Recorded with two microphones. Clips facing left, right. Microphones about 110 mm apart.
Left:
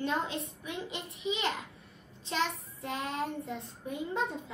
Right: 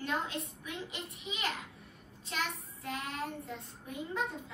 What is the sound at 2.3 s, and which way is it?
Child singing, 25° left (ahead or behind).